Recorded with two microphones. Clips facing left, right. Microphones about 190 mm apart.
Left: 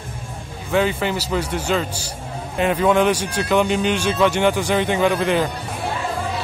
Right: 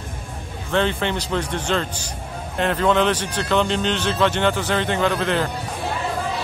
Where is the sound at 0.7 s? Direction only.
5° left (ahead or behind).